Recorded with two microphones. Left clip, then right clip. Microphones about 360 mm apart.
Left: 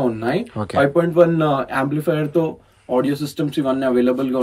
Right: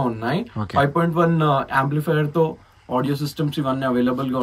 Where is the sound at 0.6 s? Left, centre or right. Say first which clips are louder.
Left 3 dB; centre.